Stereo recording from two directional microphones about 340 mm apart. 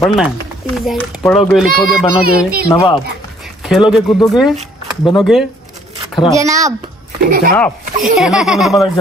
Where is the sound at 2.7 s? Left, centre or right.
Centre.